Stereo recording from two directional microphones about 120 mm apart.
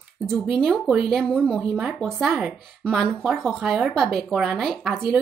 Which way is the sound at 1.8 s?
10° right (ahead or behind).